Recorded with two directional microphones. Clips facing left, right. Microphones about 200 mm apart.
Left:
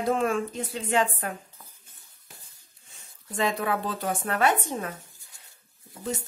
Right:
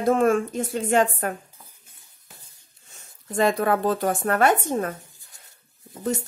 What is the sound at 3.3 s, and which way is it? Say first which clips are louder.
Speech: right 6 dB; 45° right (ahead or behind).